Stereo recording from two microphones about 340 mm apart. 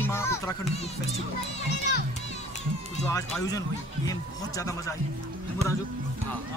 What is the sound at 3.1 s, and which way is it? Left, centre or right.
Speech, centre.